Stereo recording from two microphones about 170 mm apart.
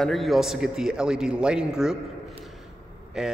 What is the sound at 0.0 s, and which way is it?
A man's voice, centre (ahead or behind).